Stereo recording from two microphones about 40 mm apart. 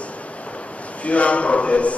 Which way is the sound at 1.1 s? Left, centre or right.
Left.